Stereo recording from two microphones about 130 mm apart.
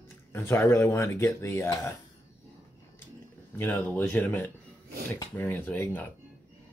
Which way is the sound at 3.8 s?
15° left (ahead or behind).